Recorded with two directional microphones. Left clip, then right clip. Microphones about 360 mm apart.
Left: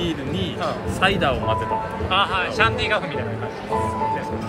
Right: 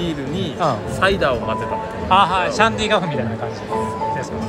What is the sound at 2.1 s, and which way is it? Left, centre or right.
Speech, centre.